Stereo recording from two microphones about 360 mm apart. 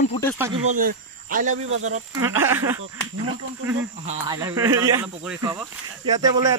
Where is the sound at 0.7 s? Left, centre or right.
Right.